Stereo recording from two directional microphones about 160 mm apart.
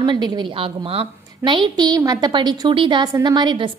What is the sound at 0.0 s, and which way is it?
A woman's voice, 30° right (ahead or behind).